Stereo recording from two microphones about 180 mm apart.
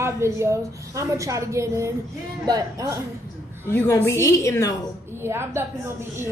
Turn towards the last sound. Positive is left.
turn(degrees=-15)  # may be behind; listen again after turning